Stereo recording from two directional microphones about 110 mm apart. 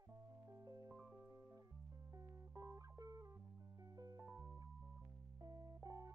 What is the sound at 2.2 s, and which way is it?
Music, 30° right (ahead or behind).